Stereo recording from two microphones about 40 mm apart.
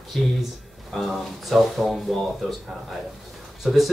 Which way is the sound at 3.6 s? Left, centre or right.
Centre.